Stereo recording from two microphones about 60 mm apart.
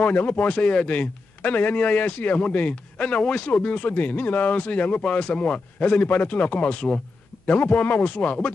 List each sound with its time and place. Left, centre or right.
0.0 s a man's voice: left